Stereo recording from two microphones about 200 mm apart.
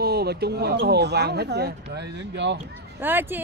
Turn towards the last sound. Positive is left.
turn(degrees=-10)  # may be behind; listen again after turning